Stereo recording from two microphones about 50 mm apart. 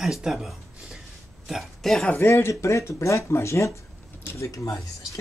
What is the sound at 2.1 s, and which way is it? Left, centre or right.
Speech, left.